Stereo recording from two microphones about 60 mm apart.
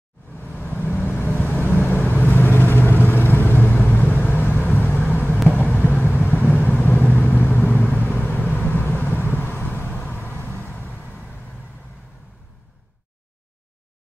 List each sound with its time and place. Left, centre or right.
0.6 s vehicle: left